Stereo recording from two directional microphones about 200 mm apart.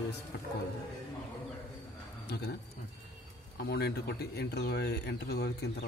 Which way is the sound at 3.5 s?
55° left (ahead or behind).